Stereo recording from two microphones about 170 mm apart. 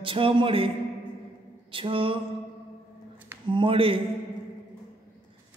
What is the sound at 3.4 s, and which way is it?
Speech, 30° right (ahead or behind).